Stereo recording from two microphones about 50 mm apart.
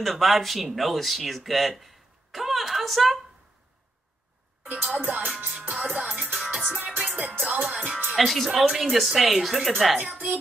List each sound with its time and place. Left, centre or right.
0.0 s speech: centre
4.8 s speech: right
5.9 s music: centre
7.1 s music: right
7.4 s music: centre
8.2 s speech: centre
9.9 s speech: right